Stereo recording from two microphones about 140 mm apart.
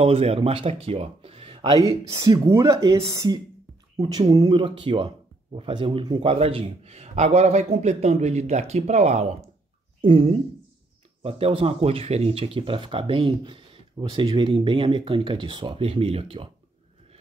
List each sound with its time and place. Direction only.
0.0 s speech: 45° right (ahead or behind)
1.9 s speech: 25° right (ahead or behind); by 16.4 s 40° right (ahead or behind)